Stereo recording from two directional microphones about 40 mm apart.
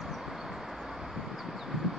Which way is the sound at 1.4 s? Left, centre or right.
Centre.